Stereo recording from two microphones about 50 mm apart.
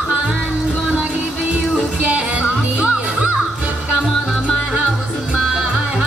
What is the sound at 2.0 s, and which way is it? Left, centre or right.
Music, right.